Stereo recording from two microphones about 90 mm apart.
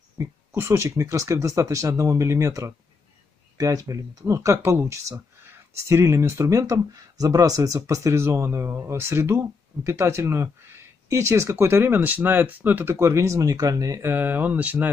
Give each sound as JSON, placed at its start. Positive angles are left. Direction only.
{"t": 0.2, "sound": "speech", "side_deg": -30}
{"t": 14.0, "sound": "speech", "side_deg": -20}